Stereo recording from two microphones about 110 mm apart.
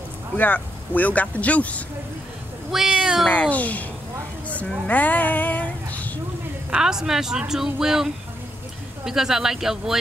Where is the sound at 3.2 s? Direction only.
10° left (ahead or behind).